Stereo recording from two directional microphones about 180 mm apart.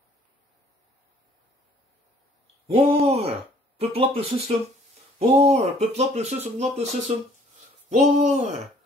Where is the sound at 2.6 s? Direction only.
30° right (ahead or behind).